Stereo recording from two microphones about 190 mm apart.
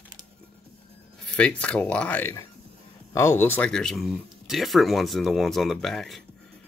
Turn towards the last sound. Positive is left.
turn(degrees=0)  # may be behind; listen again after turning